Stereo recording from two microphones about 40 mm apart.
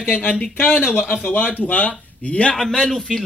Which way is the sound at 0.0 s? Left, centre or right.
Left.